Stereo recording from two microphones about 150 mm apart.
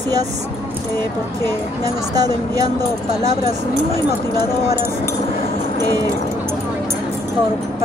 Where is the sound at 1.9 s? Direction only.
25° right (ahead or behind).